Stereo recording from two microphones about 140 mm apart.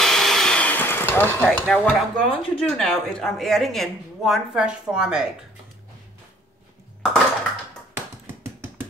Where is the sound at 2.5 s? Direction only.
5° left (ahead or behind).